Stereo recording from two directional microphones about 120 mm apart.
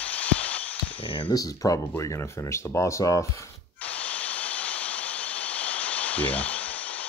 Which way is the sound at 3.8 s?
10° left (ahead or behind).